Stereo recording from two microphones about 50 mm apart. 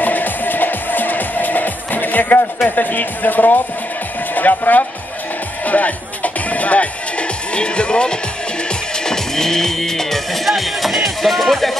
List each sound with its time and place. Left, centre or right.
0.0 s music: left
2.7 s speech: left
5.7 s music: left
9.0 s speech: centre